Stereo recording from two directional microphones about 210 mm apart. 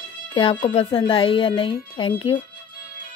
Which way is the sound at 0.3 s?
25° left (ahead or behind).